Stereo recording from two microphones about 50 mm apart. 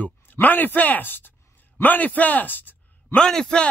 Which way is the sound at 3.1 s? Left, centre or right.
Centre.